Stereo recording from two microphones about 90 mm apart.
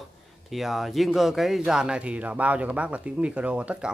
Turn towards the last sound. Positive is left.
turn(degrees=-15)  # may be behind; listen again after turning